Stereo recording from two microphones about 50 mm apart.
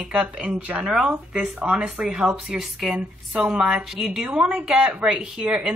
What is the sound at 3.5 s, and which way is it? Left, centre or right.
Speech, centre.